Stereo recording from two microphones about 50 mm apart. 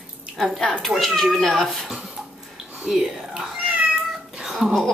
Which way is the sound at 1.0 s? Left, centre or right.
Centre.